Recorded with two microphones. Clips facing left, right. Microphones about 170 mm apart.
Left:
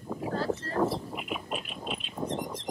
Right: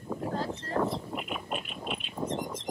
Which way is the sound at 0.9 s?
Centre (ahead or behind).